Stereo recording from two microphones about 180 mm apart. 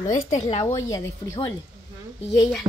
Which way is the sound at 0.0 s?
40° left (ahead or behind).